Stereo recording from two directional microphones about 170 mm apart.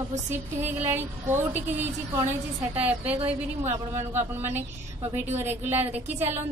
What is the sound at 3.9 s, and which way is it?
A woman's voice, 15° right (ahead or behind).